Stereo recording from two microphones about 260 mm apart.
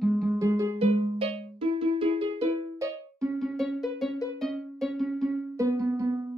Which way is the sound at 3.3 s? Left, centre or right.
Centre.